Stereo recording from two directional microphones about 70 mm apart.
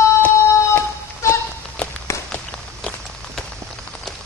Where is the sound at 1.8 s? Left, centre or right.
Centre.